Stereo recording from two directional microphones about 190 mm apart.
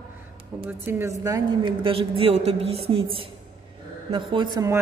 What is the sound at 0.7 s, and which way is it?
A woman's voice, 10° right (ahead or behind).